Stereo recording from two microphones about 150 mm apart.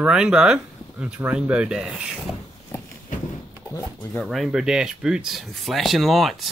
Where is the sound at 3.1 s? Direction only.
60° left (ahead or behind).